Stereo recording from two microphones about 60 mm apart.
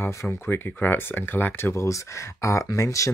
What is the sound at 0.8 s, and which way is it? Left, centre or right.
Speech, left.